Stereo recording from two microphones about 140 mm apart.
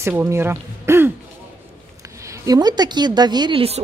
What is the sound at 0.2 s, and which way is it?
Speech, 15° right (ahead or behind).